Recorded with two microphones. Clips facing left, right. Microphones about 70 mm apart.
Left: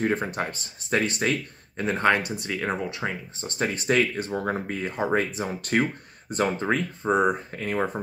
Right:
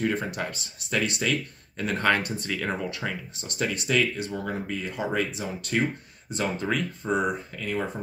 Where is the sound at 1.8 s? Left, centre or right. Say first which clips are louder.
Left 2 dB; left.